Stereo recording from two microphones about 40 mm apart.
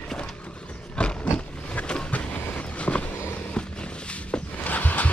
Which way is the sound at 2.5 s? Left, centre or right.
Left.